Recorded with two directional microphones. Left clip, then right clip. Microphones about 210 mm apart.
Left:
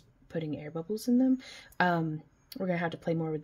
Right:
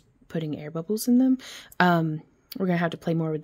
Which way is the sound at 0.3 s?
50° right (ahead or behind).